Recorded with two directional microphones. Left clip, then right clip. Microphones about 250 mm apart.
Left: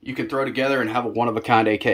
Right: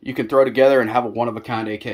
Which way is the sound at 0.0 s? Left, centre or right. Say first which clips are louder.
Right 8 dB; right.